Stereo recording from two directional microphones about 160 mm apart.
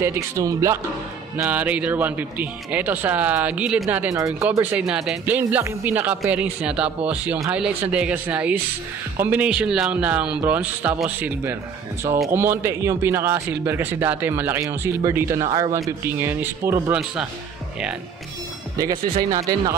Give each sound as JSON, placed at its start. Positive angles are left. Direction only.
{"t": 0.0, "sound": "a man's voice", "side_deg": -20}
{"t": 4.1, "sound": "a man's voice", "side_deg": -20}
{"t": 4.5, "sound": "a man's voice", "side_deg": -10}
{"t": 16.1, "sound": "a man's voice", "side_deg": -15}
{"t": 19.3, "sound": "a man's voice", "side_deg": -20}